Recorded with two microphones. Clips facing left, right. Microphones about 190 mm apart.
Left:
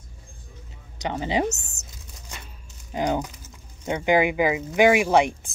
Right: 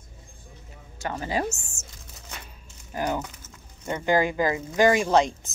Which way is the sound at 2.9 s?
15° left (ahead or behind).